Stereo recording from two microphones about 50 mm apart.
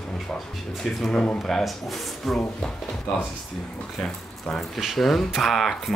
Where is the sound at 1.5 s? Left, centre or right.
Centre.